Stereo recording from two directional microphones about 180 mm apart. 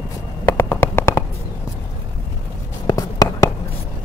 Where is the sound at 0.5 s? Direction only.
15° left (ahead or behind).